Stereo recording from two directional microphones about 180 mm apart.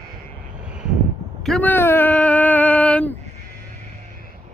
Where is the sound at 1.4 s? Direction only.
10° left (ahead or behind).